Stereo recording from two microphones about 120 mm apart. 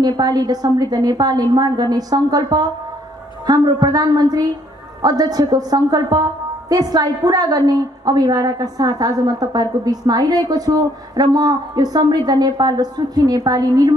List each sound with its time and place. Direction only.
0.2 s a woman's voice: 30° right (ahead or behind)